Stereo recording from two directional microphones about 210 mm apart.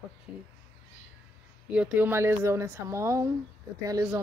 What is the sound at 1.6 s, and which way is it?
Speech, 5° right (ahead or behind).